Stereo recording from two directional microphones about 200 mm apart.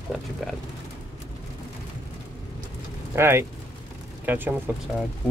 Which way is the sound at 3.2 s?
10° right (ahead or behind).